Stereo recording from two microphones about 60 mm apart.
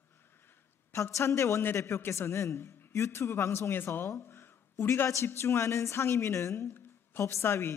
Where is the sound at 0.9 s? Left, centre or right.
Left.